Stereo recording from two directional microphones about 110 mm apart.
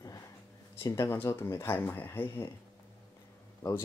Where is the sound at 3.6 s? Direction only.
30° left (ahead or behind).